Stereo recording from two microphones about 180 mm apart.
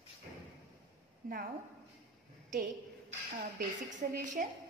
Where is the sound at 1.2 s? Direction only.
50° right (ahead or behind).